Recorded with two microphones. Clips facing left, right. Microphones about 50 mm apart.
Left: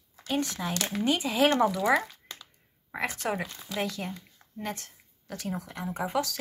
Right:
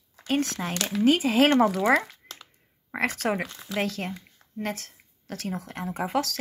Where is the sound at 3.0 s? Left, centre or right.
Right.